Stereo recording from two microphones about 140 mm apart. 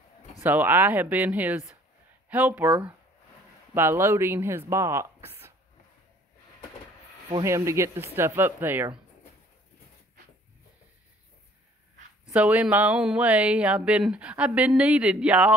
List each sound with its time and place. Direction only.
0.4 s speech: 15° right (ahead or behind)
7.2 s speech: 25° right (ahead or behind)
12.3 s speech: 10° right (ahead or behind)